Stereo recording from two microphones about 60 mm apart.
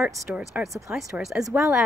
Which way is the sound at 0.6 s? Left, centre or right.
Centre.